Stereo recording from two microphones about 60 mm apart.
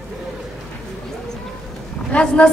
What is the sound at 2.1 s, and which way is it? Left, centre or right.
Speech, centre.